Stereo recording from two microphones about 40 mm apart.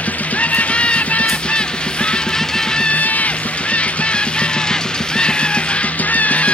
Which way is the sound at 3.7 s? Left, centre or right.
Left.